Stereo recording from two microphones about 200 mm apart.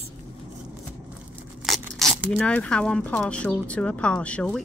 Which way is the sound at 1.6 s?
Centre (ahead or behind).